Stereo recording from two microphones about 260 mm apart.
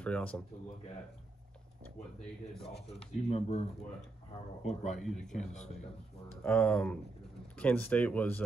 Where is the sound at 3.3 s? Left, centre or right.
Left.